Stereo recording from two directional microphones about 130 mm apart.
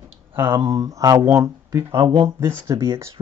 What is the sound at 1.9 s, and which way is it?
Speech, 40° right (ahead or behind).